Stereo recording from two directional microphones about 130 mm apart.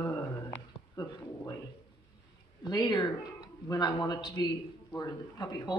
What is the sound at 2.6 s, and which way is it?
Speech, 35° left (ahead or behind).